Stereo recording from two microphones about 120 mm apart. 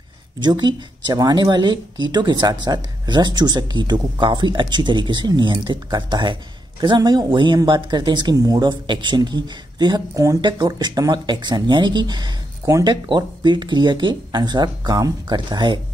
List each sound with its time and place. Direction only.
0.4 s speech: 40° right (ahead or behind)